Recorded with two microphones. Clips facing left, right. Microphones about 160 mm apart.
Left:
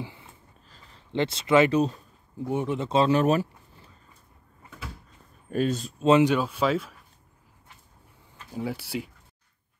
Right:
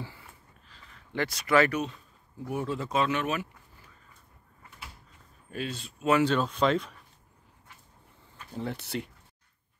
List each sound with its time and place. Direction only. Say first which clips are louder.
0.0 s a sound: left 4 dB; 20° left (ahead or behind)
0.7 s a sound: left 3 dB; 35° left (ahead or behind)
1.8 s speech: left 8 dB; 30° left (ahead or behind)
5.5 s speech: left 10 dB; 45° left (ahead or behind)
6.0 s speech: left 5 dB; 20° left (ahead or behind)
6.3 s speech: left 1 dB; 10° left (ahead or behind)
8.5 s speech: left 3 dB; 5° left (ahead or behind)